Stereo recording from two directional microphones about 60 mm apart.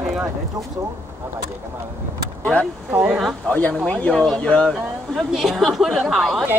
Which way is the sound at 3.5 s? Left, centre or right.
Left.